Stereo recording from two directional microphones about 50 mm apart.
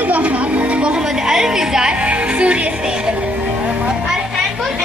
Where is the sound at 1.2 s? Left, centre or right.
Centre.